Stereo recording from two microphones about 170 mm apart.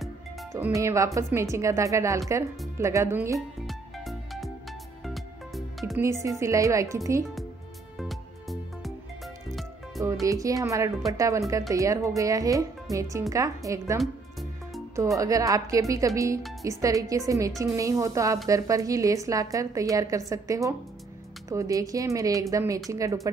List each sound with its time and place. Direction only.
0.5 s speech: 15° right (ahead or behind)
3.3 s music: centre (ahead or behind)
5.9 s speech: 15° right (ahead or behind)
8.0 s music: centre (ahead or behind)
10.2 s a woman's voice: 20° right (ahead or behind)
15.1 s a woman's voice: 20° right (ahead or behind)